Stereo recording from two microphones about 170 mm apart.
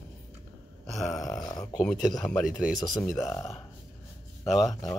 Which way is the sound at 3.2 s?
20° left (ahead or behind).